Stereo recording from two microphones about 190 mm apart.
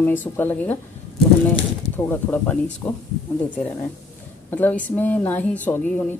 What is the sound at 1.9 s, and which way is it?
Speech, 10° left (ahead or behind).